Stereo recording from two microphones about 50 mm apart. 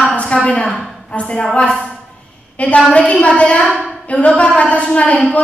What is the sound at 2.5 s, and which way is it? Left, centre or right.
A woman's voice, left.